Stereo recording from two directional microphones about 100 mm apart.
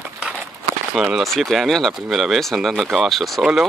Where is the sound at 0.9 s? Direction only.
5° right (ahead or behind).